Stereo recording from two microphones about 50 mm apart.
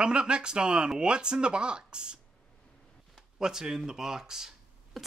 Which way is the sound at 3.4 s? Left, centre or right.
Centre.